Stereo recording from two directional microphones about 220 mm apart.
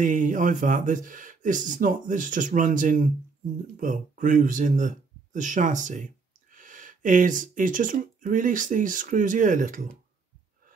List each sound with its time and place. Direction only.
0.0 s speech: 35° right (ahead or behind)